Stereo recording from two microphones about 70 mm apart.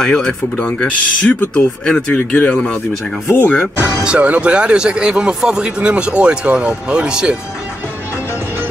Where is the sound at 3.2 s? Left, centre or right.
Left.